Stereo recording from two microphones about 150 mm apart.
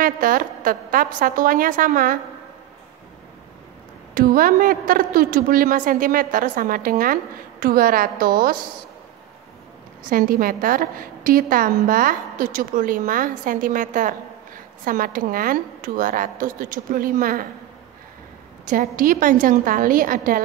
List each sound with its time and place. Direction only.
0.0 s a woman's voice: 70° right (ahead or behind)
4.1 s a woman's voice: 70° right (ahead or behind)
10.0 s a woman's voice: 75° right (ahead or behind)
18.7 s a woman's voice: 60° right (ahead or behind)